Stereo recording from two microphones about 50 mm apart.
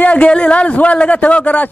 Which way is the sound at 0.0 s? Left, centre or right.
Left.